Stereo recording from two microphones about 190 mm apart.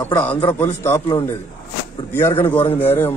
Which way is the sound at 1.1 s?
25° left (ahead or behind).